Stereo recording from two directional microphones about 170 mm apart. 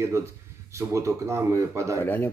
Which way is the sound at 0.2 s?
15° right (ahead or behind).